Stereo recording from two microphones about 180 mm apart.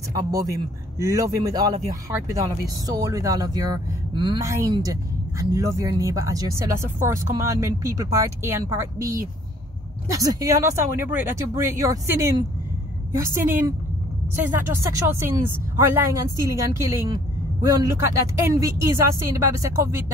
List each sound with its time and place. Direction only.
0.1 s a man's voice: 20° right (ahead or behind)